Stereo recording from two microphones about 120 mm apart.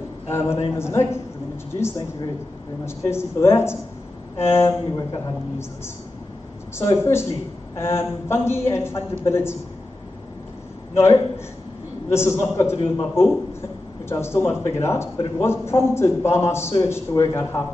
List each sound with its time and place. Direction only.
0.3 s a man's voice: 20° left (ahead or behind)
6.8 s a man's voice: 25° left (ahead or behind)
11.0 s a man's voice: 20° left (ahead or behind)